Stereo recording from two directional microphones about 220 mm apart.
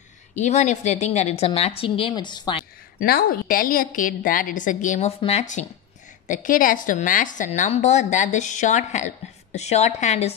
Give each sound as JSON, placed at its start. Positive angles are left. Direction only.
{"t": 0.4, "sound": "a woman's voice", "side_deg": 30}
{"t": 3.0, "sound": "a woman's voice", "side_deg": 40}